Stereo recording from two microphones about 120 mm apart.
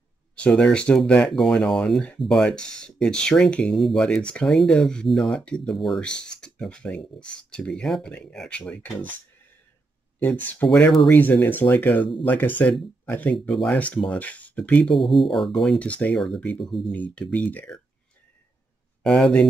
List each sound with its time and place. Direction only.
0.4 s speech: 10° left (ahead or behind)
10.2 s speech: 15° left (ahead or behind)
10.7 s speech: 5° left (ahead or behind)
11.1 s speech: 15° left (ahead or behind)
19.0 s speech: 5° left (ahead or behind)